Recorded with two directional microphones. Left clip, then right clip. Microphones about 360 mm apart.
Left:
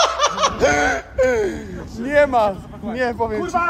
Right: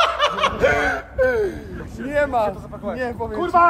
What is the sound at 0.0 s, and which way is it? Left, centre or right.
Snicker, centre.